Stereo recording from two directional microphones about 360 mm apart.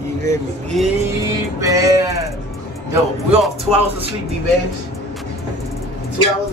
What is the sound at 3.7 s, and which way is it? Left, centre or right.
Speech, centre.